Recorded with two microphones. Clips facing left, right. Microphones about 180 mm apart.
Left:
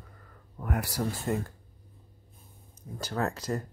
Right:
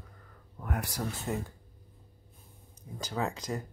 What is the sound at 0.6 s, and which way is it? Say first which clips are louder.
Speech: left 4 dB; 5° left (ahead or behind).